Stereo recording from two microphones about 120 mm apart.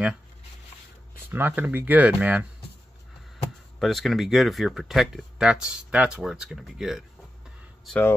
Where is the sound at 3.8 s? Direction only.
Centre (ahead or behind).